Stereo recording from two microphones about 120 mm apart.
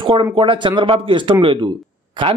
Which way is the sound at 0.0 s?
45° right (ahead or behind).